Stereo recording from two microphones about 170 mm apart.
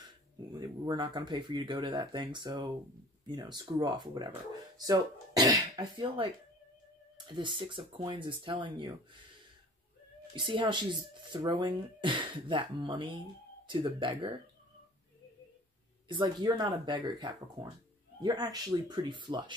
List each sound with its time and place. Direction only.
0.5 s speech: 25° right (ahead or behind)
7.2 s speech: 30° right (ahead or behind)
10.3 s speech: 30° right (ahead or behind)
16.1 s speech: 25° right (ahead or behind)